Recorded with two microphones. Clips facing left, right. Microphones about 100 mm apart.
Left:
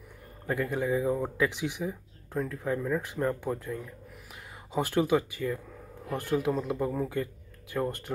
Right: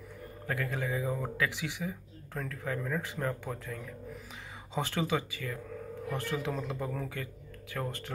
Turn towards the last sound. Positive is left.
turn(degrees=15)  # may be behind; listen again after turning